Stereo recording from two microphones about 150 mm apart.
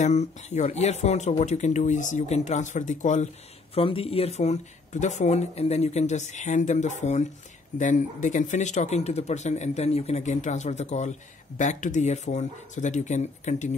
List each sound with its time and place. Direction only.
0.0 s speech: 50° left (ahead or behind)
3.7 s speech: 40° left (ahead or behind)